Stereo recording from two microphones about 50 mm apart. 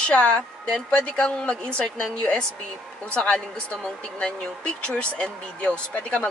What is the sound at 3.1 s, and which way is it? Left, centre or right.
Speech, left.